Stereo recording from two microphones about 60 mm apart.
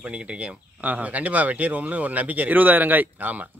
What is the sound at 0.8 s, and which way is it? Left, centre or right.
Speech, right.